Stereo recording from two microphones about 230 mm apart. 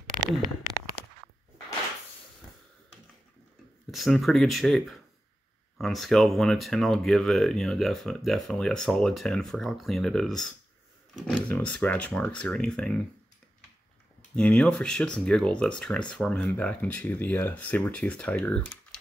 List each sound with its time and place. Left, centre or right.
0.3 s speech: centre
1.0 s a sound: left
3.9 s speech: centre
14.3 s speech: centre